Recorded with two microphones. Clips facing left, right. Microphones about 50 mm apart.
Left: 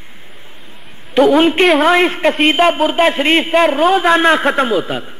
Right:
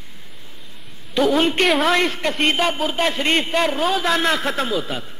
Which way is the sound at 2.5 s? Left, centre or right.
Left.